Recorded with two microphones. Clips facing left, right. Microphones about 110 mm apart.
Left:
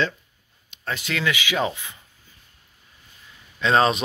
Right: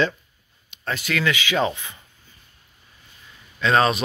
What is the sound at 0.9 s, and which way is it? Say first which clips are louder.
Speech: right 2 dB; 20° left (ahead or behind).